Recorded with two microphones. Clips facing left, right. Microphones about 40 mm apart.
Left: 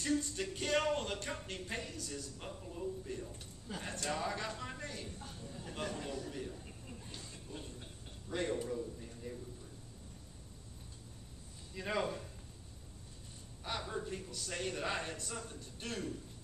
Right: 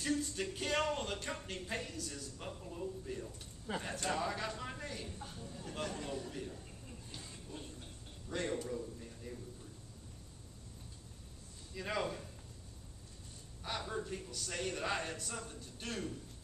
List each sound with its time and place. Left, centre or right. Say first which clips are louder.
0.0 s speech: left 1 dB; centre
3.7 s speech: right 5 dB; right
4.1 s speech: even; centre
7.3 s a sound: left 1 dB; centre
8.6 s a man's voice: left 1 dB; centre
11.7 s a man's voice: left 1 dB; centre
13.7 s speech: even; centre